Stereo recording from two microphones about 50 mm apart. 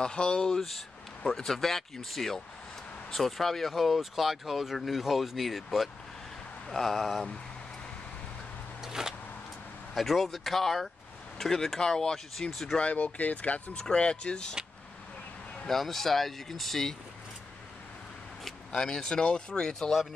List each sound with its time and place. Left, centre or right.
0.0 s speech: centre
0.6 s speech: centre
8.8 s a sound: centre
9.9 s speech: centre
12.7 s speech: left
13.8 s speech: centre
15.6 s speech: centre
18.7 s speech: centre